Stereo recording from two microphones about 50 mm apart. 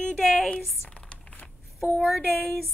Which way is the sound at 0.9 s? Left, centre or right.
Left.